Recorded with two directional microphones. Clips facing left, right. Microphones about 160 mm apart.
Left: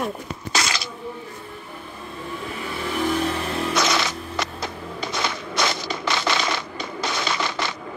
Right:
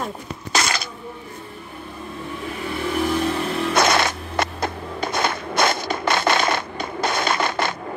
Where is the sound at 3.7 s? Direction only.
55° right (ahead or behind).